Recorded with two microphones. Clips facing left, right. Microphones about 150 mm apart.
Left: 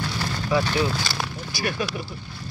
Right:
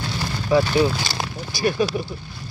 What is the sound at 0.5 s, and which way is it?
Speech, 30° right (ahead or behind).